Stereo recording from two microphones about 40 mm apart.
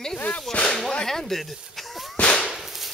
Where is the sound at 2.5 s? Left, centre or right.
Centre.